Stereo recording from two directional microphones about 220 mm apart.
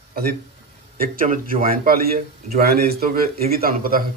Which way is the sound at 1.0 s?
40° right (ahead or behind).